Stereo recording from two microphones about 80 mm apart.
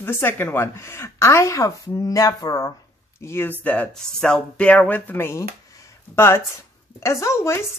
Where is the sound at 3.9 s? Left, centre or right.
Centre; by 5.4 s left.